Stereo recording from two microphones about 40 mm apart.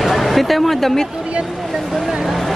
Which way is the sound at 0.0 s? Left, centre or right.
Centre.